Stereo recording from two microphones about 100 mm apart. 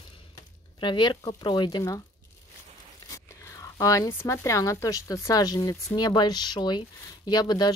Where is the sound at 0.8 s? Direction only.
50° left (ahead or behind).